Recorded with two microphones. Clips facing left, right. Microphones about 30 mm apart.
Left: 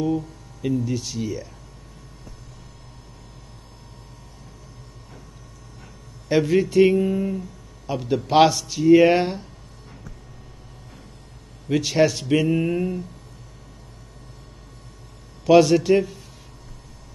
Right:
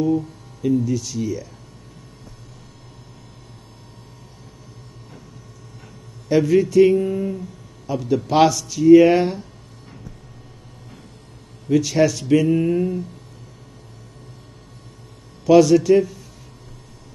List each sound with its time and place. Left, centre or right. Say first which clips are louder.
0.8 s speech: right 3 dB; centre
6.2 s speech: right 3 dB; centre
7.0 s speech: even; centre
7.9 s speech: even; centre
11.7 s a man's voice: right 2 dB; centre
12.3 s mantra: right 3 dB; centre
15.4 s speech: right 2 dB; centre